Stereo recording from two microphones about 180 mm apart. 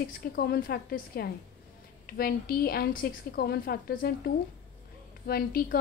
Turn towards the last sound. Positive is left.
turn(degrees=55)  # may be behind; listen again after turning